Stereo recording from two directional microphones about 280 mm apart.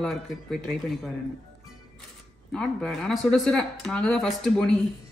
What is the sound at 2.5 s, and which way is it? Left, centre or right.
Speech, centre.